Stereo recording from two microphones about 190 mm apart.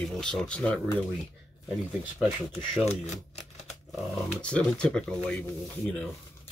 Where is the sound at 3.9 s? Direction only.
5° left (ahead or behind).